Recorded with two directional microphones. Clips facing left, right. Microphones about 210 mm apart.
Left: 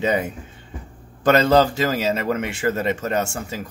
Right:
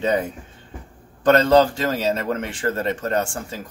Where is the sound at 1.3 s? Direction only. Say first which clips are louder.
Right 1 dB; 5° left (ahead or behind).